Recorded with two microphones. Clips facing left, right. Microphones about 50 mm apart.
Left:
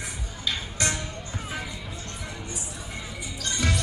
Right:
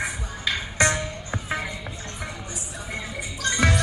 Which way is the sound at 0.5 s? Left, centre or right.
Right.